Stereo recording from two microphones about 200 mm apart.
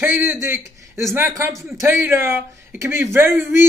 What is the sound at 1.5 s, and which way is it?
Speech, centre (ahead or behind).